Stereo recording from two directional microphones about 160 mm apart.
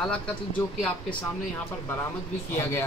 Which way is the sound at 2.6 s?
15° left (ahead or behind).